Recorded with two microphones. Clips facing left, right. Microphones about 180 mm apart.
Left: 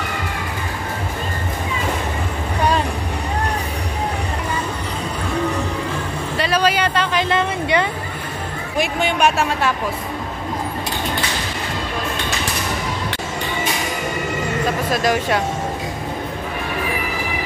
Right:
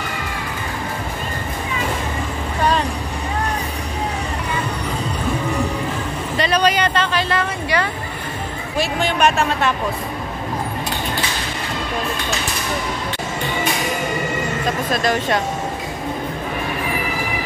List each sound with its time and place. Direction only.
6.3 s a sound: 5° left (ahead or behind)
8.7 s speech: 10° left (ahead or behind)
14.9 s speech: 10° left (ahead or behind)